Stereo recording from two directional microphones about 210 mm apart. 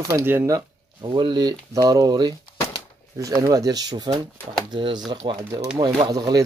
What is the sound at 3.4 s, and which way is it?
Speech, 15° right (ahead or behind).